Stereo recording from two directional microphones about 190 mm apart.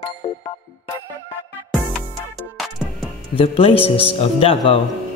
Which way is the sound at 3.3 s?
30° left (ahead or behind).